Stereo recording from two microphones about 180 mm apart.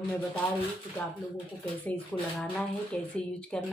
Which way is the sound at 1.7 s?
5° left (ahead or behind).